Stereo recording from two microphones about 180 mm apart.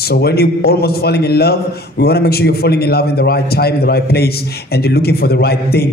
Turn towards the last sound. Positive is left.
turn(degrees=60)  # may be behind; listen again after turning